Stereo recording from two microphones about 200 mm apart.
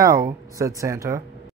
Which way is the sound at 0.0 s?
15° right (ahead or behind).